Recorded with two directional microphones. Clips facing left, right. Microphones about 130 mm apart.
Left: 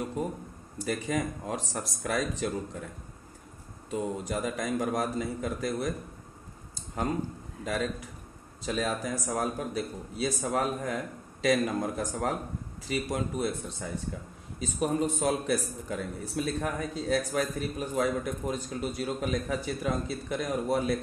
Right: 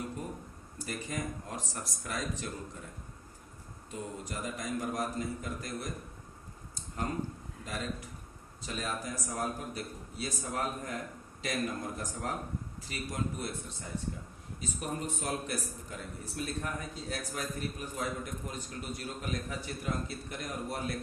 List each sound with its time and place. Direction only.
0.7 s a man's voice: 90° left
3.9 s a man's voice: 90° left
7.6 s a man's voice: 90° left